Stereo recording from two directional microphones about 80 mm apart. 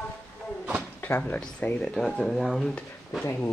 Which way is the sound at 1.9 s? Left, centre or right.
Centre.